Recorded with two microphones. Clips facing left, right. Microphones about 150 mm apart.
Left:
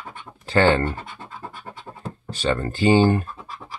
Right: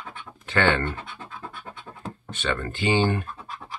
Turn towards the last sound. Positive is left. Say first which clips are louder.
# left 6 dB
turn(degrees=40)  # may be behind; listen again after turning